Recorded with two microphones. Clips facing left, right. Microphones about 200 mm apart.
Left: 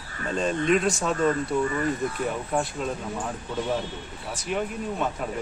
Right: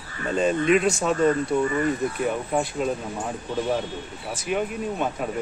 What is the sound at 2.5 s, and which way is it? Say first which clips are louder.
Speech: right 3 dB; 5° right (ahead or behind).